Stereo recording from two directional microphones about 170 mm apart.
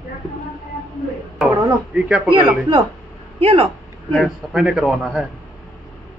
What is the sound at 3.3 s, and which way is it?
Speech, 35° right (ahead or behind).